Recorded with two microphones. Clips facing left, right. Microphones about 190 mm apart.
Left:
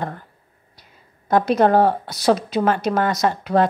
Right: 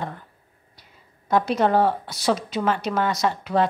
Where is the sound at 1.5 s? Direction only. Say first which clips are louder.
Left 5 dB; 40° left (ahead or behind).